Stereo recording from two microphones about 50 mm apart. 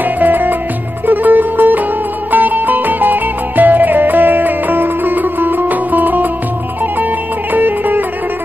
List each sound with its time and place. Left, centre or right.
0.0 s music: right
7.5 s music: right